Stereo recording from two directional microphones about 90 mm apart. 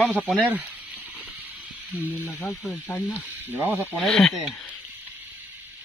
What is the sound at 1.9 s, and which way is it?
Speech, 15° right (ahead or behind).